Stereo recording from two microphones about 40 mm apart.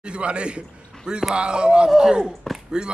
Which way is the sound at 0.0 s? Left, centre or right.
Right.